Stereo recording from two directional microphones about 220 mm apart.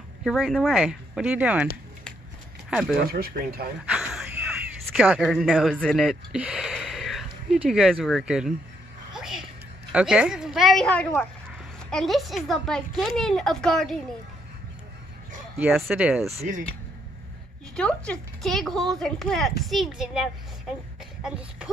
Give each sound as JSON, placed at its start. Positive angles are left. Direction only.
{"t": 0.2, "sound": "speech", "side_deg": 0}
{"t": 2.7, "sound": "speech", "side_deg": 0}
{"t": 3.1, "sound": "speech", "side_deg": -45}
{"t": 3.9, "sound": "gasp", "side_deg": -5}
{"t": 9.1, "sound": "a sound", "side_deg": 0}
{"t": 9.9, "sound": "speech", "side_deg": -5}
{"t": 15.5, "sound": "speech", "side_deg": -5}
{"t": 16.3, "sound": "speech", "side_deg": -35}
{"t": 17.7, "sound": "speech", "side_deg": 5}